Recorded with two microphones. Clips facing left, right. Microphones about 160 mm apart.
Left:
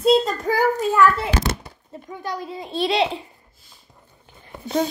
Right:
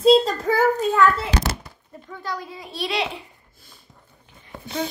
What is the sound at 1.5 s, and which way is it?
A child's voice, 20° left (ahead or behind).